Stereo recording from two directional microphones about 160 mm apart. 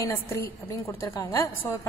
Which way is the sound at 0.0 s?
15° left (ahead or behind).